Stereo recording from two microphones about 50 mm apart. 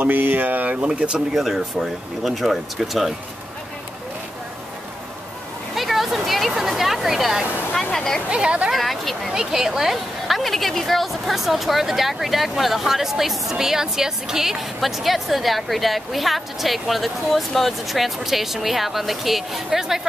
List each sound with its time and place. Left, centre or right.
0.0 s speech: right
1.3 s a woman's voice: centre
5.8 s a sound: centre
7.9 s a sound: centre
8.3 s speech: right
8.7 s a woman's voice: centre
9.3 s a woman's voice: centre